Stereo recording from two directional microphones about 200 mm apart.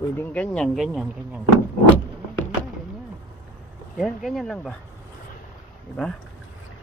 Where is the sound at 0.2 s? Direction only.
5° left (ahead or behind).